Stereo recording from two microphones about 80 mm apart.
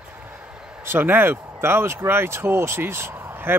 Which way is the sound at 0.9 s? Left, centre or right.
Right.